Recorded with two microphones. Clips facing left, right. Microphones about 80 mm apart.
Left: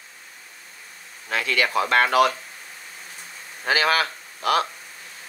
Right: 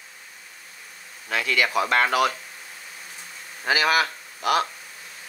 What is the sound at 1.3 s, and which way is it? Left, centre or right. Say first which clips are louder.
Speech: even; left.